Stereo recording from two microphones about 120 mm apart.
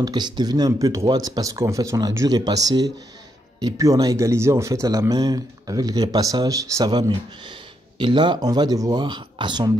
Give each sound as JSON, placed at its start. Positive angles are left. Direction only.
{"t": 0.0, "sound": "speech", "side_deg": -35}